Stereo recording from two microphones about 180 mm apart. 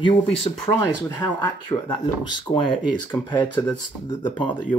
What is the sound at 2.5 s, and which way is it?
Speech, 30° left (ahead or behind).